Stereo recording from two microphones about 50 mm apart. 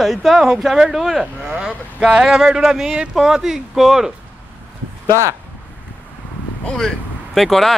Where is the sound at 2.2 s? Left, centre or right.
Centre.